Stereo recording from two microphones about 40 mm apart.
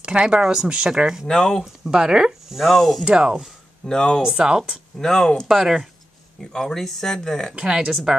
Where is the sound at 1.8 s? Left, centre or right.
Centre.